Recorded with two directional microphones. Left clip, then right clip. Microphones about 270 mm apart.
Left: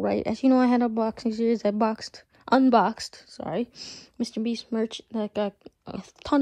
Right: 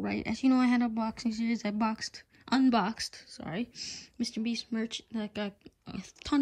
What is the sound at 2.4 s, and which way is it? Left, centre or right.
Speech, centre.